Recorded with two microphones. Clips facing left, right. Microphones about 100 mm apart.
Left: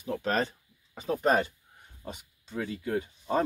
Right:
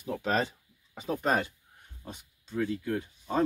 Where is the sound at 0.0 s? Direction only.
5° right (ahead or behind).